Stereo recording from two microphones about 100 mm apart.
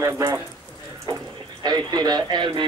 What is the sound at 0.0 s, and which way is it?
Speech, 25° right (ahead or behind).